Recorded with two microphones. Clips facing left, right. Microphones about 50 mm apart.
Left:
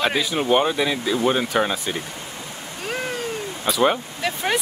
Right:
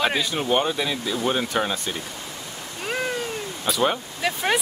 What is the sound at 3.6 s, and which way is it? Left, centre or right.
Speech, centre.